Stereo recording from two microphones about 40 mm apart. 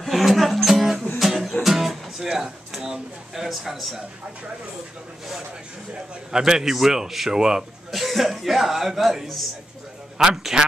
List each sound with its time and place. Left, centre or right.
0.0 s music: centre
2.2 s a man's voice: centre
6.3 s a man's voice: centre
7.9 s a man's voice: centre